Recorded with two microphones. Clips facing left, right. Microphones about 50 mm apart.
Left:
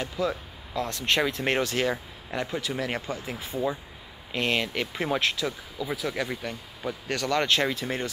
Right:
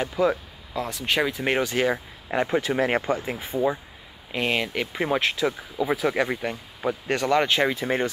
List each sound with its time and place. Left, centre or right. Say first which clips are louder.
0.0 s speech: right 6 dB; right
0.8 s speech: right 1 dB; centre
4.3 s speech: right 2 dB; centre